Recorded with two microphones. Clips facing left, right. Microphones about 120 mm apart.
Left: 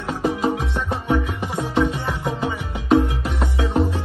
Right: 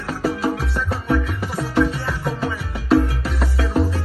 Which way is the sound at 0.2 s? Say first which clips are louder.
Even; 20° left (ahead or behind).